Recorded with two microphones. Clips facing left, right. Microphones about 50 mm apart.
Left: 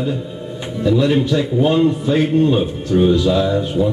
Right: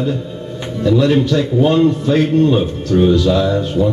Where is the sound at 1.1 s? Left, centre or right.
Centre.